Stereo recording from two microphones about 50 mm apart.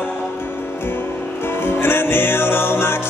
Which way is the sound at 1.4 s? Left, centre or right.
Left.